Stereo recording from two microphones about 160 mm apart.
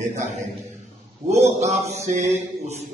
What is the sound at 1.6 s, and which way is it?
Mantra, 45° right (ahead or behind).